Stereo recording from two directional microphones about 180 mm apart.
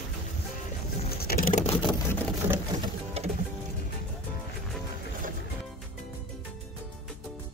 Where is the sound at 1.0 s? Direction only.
60° left (ahead or behind).